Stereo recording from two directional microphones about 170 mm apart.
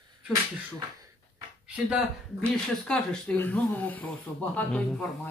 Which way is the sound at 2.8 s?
10° left (ahead or behind).